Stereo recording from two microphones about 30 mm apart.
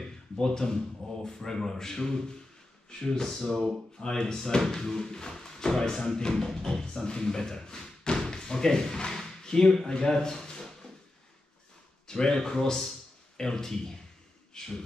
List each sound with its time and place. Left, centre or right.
0.5 s a man's voice: centre
3.3 s a man's voice: centre
4.0 s a man's voice: centre
6.3 s speech: centre
9.8 s a sound: left
12.1 s a man's voice: left